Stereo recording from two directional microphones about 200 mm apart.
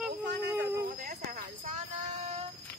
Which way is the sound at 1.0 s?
45° right (ahead or behind).